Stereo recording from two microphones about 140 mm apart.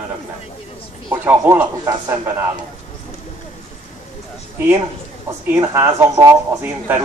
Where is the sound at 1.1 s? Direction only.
15° right (ahead or behind).